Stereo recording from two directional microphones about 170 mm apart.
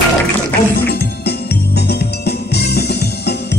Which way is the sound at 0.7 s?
65° left (ahead or behind).